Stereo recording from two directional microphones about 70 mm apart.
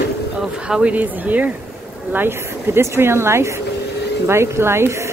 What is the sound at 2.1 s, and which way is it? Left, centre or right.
A woman's voice, right.